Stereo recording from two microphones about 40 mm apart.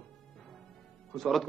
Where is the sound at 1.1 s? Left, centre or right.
Centre.